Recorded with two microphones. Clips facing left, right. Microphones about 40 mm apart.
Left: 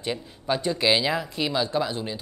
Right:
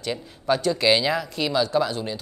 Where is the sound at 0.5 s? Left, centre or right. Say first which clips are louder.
Right 3 dB; left.